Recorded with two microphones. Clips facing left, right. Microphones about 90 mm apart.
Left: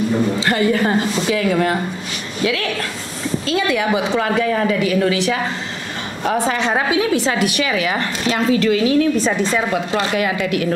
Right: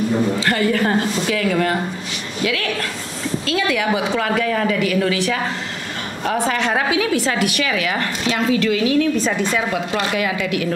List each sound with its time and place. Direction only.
0.4 s a woman's voice: 20° left (ahead or behind)
3.4 s a woman's voice: 25° left (ahead or behind)
10.1 s a woman's voice: 40° left (ahead or behind)